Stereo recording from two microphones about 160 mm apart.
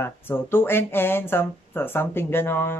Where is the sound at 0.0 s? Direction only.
15° left (ahead or behind).